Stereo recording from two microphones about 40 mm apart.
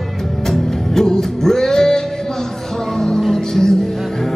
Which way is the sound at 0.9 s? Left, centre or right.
Centre.